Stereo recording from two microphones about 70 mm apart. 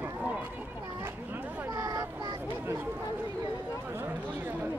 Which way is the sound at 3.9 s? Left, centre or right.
Right.